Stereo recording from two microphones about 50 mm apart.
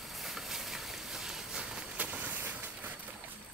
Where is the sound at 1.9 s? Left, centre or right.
Right.